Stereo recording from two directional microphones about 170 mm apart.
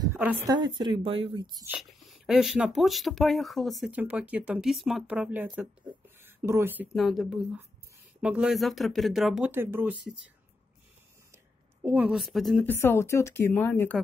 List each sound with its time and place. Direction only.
0.0 s a sound: 10° right (ahead or behind)
0.5 s speech: 25° right (ahead or behind)
1.7 s speech: centre (ahead or behind)
6.9 s speech: centre (ahead or behind)
11.3 s a woman's voice: 10° right (ahead or behind)
12.6 s a woman's voice: 15° left (ahead or behind)